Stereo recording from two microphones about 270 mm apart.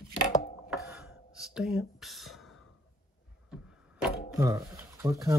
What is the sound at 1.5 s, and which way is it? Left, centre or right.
Speech, centre.